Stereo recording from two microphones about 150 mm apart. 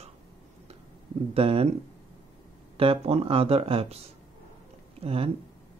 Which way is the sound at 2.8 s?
40° right (ahead or behind).